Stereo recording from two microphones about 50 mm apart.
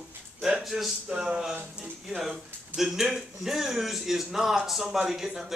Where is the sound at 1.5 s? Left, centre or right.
Right.